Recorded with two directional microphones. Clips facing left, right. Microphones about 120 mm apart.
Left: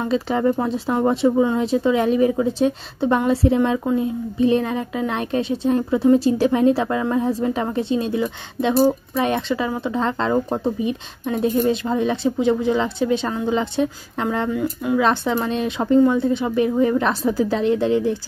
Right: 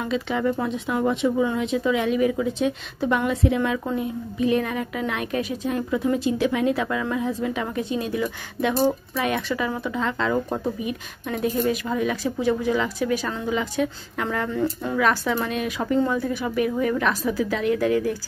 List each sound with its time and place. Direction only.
0.0 s a woman's voice: 35° left (ahead or behind)
14.5 s speech: 10° left (ahead or behind)
15.0 s a woman's voice: 25° left (ahead or behind)